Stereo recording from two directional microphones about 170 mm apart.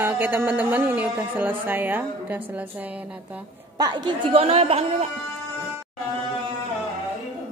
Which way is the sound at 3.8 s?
25° right (ahead or behind).